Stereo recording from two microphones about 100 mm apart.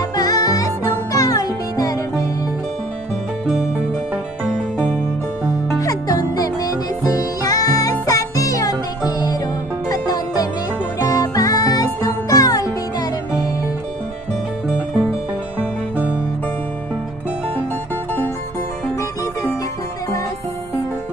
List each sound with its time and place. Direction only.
0.1 s music: 35° left (ahead or behind)
5.8 s music: 35° left (ahead or behind)